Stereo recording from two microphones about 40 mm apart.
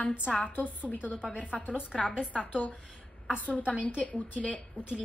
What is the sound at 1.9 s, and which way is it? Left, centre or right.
Speech, left.